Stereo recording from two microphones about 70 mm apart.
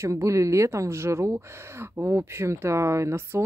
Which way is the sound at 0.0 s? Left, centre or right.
Right.